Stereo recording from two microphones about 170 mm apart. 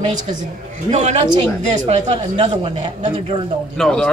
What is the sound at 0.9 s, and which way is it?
Speech, 45° right (ahead or behind).